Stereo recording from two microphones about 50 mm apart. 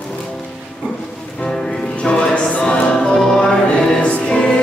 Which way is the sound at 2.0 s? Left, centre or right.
Centre.